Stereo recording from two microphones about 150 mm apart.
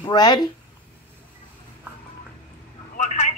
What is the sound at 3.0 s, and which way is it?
Vehicle, 55° left (ahead or behind).